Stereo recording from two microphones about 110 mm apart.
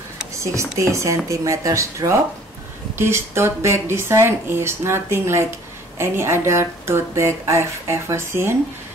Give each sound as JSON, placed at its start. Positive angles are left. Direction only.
{"t": 0.4, "sound": "speech", "side_deg": -25}